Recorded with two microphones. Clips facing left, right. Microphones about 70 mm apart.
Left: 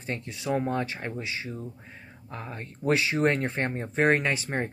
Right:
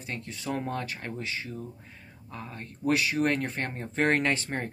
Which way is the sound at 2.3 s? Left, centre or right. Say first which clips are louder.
Left 2 dB; left.